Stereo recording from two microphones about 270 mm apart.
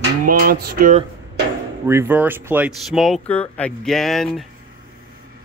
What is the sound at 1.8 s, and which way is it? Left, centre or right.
Speech, centre.